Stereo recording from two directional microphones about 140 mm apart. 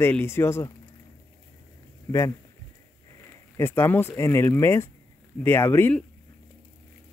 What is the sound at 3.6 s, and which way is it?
Speech, 15° left (ahead or behind).